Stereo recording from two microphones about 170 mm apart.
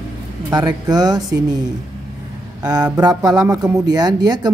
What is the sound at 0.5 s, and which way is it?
Speech, 25° right (ahead or behind).